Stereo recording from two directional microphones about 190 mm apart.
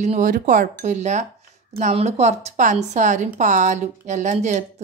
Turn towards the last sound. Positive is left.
turn(degrees=-35)  # may be behind; listen again after turning